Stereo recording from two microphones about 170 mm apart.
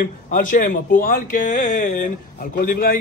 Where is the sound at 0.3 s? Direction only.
50° left (ahead or behind).